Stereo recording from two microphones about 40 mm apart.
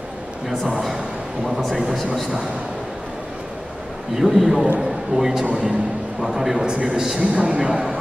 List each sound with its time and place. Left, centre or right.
1.6 s speech: centre
4.2 s a man's voice: centre
5.5 s a man's voice: right
6.3 s a man's voice: centre
6.6 s a man's voice: right